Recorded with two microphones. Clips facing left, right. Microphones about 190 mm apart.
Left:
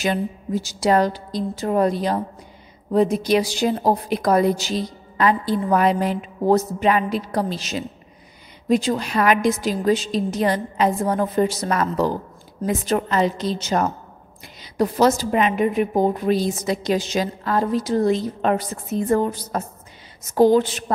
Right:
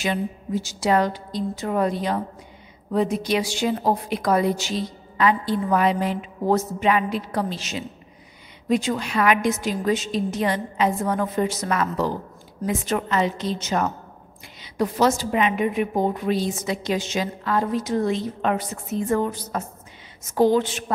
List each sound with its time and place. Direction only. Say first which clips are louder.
0.0 s a woman's voice: left 3 dB; 40° left (ahead or behind)